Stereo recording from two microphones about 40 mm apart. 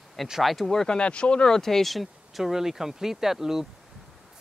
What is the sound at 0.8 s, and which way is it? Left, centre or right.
Speech, left.